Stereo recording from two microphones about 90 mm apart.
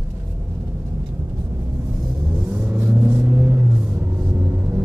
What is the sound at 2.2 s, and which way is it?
Vehicle, 25° right (ahead or behind).